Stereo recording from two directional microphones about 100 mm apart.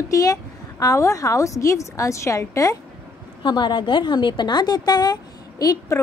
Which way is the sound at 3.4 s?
50° left (ahead or behind).